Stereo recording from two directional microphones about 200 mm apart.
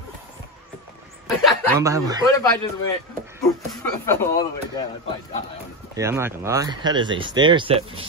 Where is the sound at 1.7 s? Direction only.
15° right (ahead or behind).